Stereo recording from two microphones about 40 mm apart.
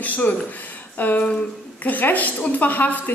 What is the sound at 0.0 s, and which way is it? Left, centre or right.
A woman's voice, left.